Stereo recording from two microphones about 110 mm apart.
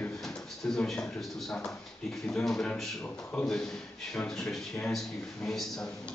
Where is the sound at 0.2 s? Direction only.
5° left (ahead or behind).